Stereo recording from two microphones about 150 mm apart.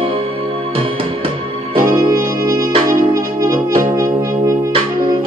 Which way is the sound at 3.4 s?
65° right (ahead or behind).